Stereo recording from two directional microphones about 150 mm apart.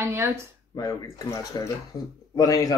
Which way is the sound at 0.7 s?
20° left (ahead or behind).